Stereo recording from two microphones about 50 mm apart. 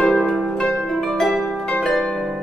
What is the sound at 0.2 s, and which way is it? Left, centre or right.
Harp, centre.